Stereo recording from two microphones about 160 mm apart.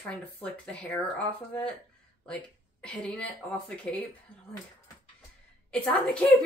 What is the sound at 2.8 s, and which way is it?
A woman's voice, 5° left (ahead or behind).